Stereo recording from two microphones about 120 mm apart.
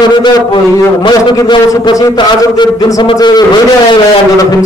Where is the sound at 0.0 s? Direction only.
35° left (ahead or behind).